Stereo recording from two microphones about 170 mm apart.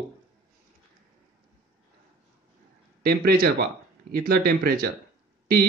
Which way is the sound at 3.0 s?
60° right (ahead or behind).